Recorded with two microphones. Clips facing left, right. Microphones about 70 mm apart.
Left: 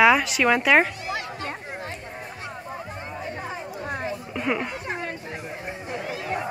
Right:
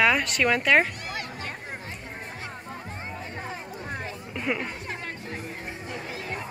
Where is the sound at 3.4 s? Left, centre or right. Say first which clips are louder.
Left 3 dB; centre.